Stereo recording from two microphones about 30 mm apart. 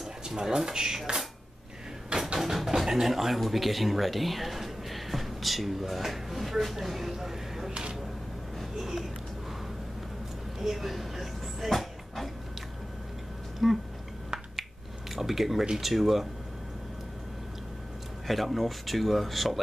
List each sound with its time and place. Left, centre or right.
0.6 s speech: centre
2.3 s speech: centre
7.7 s a sound: right
8.7 s speech: centre
10.6 s a sound: centre
13.6 s speech: centre
14.6 s finger snapping: centre
15.8 s speech: centre
18.2 s speech: centre